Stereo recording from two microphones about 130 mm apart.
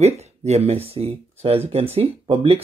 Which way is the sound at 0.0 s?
55° right (ahead or behind).